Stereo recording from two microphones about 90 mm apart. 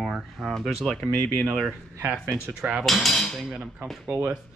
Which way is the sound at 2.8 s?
Centre (ahead or behind).